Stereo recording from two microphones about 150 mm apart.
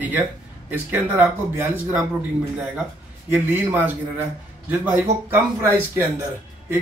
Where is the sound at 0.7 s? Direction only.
10° right (ahead or behind).